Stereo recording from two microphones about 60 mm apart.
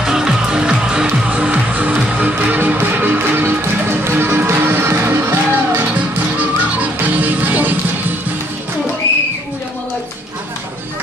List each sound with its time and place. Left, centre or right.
0.0 s music: centre; by 5.6 s right
7.0 s music: right